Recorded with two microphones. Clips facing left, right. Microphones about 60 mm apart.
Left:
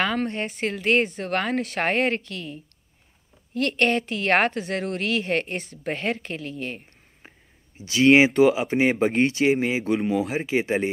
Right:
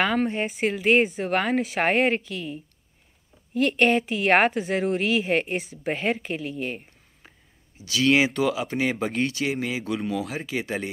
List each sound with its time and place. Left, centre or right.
0.0 s a woman's voice: centre
7.2 s speech: left